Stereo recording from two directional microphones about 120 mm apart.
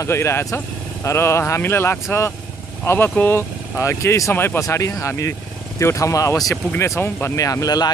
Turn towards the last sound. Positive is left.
turn(degrees=30)  # may be behind; listen again after turning